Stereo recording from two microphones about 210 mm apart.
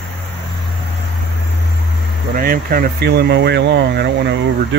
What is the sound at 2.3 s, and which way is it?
Speech, 45° right (ahead or behind).